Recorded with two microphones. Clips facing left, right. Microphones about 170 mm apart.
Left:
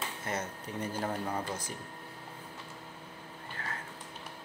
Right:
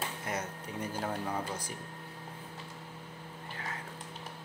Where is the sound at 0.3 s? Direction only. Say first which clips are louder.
Left 3 dB; 10° right (ahead or behind).